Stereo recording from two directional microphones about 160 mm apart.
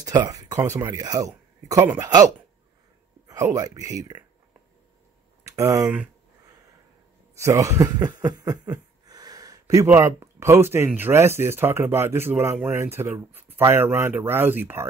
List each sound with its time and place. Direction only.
0.0 s speech: 25° right (ahead or behind)
5.4 s a sound: 20° right (ahead or behind)
7.3 s speech: 20° right (ahead or behind)